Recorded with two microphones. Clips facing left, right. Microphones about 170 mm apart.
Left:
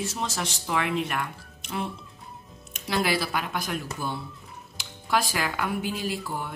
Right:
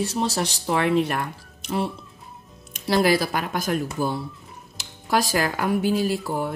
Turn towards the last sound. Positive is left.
turn(degrees=-40)  # may be behind; listen again after turning